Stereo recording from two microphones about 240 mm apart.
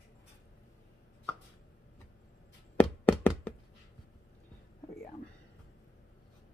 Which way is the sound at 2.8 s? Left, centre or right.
Centre.